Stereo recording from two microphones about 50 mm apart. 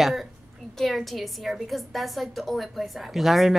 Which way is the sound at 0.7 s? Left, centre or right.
Centre.